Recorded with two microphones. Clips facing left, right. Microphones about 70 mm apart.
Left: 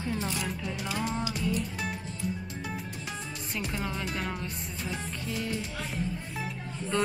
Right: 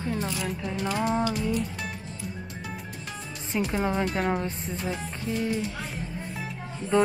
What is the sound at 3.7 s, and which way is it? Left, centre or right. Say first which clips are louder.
Speech: right 8 dB; right.